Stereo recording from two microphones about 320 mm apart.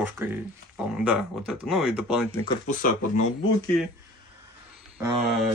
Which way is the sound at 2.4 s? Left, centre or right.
Centre.